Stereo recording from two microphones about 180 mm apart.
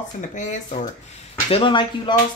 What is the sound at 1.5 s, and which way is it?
Speech, 30° left (ahead or behind).